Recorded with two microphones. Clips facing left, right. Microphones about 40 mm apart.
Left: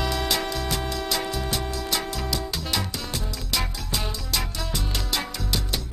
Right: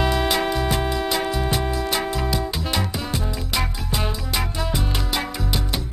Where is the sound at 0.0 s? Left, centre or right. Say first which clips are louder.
Right 5 dB; right.